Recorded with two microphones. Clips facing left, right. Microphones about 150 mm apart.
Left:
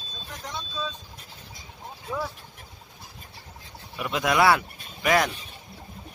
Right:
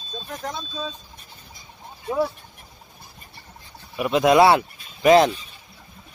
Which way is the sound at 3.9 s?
20° right (ahead or behind).